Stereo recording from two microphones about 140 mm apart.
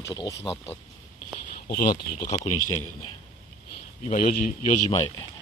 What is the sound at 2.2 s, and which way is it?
Speech, 25° left (ahead or behind).